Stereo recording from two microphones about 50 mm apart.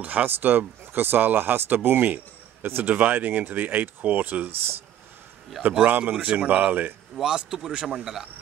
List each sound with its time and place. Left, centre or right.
0.0 s speech: right
4.5 s speech: right
5.9 s speech: right
6.7 s speech: right
7.2 s a man's voice: centre